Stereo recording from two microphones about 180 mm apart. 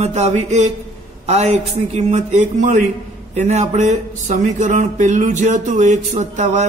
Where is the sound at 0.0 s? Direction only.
40° right (ahead or behind).